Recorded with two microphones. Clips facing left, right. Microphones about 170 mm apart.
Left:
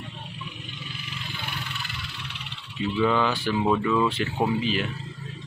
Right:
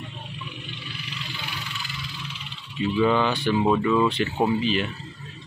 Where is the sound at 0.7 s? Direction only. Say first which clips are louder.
Right 1 dB; 45° left (ahead or behind); by 2.6 s 65° left (ahead or behind).